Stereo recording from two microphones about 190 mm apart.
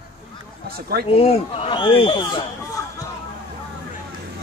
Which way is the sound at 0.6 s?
55° right (ahead or behind).